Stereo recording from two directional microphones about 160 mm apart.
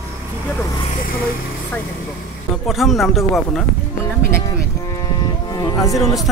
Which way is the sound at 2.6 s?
Centre (ahead or behind).